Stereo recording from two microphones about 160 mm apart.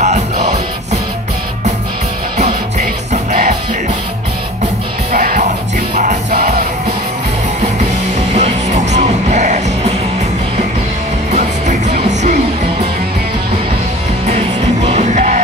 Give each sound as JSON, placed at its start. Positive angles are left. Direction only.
{"t": 0.0, "sound": "music", "side_deg": -45}
{"t": 5.1, "sound": "music", "side_deg": -65}
{"t": 8.4, "sound": "music", "side_deg": -45}
{"t": 11.3, "sound": "music", "side_deg": -50}
{"t": 14.8, "sound": "music", "side_deg": -45}